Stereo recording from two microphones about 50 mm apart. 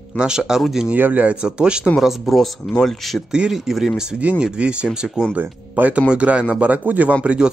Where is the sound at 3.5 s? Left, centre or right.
Centre.